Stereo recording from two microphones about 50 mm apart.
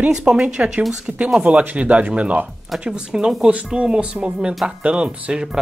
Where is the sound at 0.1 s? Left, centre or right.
Centre.